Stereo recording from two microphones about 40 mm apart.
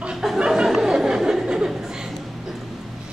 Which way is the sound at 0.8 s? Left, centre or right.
Centre.